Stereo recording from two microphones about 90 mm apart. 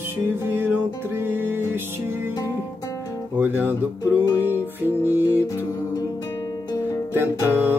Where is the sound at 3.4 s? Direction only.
20° right (ahead or behind).